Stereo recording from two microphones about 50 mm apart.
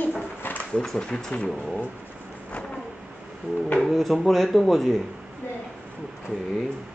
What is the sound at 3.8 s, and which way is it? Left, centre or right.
Speech, centre.